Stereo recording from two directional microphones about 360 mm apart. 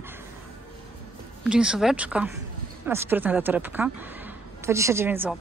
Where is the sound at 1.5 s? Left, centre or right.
Centre.